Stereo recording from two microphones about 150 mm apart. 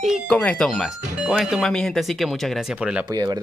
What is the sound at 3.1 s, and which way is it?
Speech, 25° right (ahead or behind).